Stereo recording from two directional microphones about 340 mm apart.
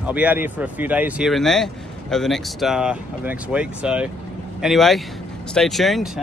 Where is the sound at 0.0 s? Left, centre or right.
Centre.